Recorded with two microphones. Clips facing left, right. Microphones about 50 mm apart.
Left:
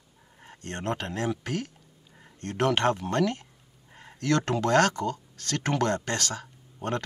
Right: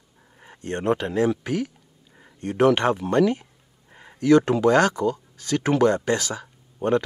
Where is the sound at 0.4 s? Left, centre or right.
Centre.